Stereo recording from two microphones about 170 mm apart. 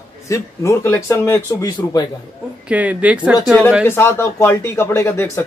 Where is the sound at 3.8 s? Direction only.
15° left (ahead or behind).